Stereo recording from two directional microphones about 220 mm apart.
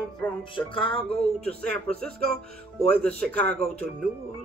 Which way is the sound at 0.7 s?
25° left (ahead or behind).